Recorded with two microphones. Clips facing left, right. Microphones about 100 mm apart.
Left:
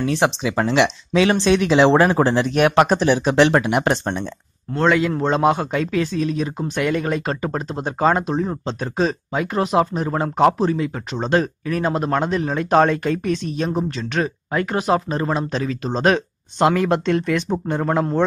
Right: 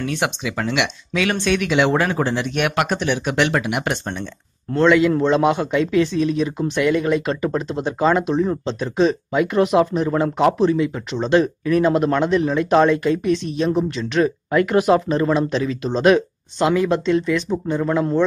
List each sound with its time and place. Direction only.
0.0 s speech: 30° left (ahead or behind)
16.5 s speech: 50° left (ahead or behind)
17.8 s speech: 40° left (ahead or behind)